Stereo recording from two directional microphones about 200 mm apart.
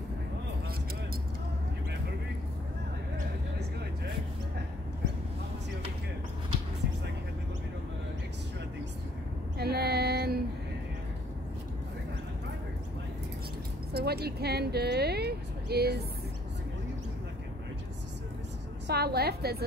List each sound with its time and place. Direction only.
9.6 s child singing: 55° right (ahead or behind)
13.9 s speech: 55° right (ahead or behind)
18.9 s a woman's voice: 50° right (ahead or behind)